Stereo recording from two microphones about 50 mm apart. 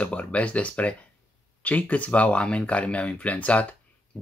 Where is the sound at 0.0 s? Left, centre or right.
Left.